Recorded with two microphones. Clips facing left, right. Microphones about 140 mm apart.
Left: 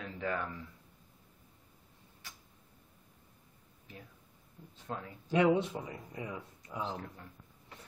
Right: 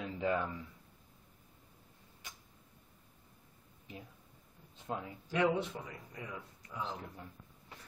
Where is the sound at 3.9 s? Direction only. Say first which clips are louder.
Right 2 dB; 20° right (ahead or behind).